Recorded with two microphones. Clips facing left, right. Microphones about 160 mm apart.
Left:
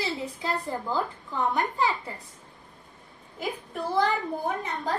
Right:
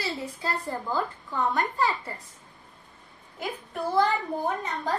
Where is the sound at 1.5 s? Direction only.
15° left (ahead or behind).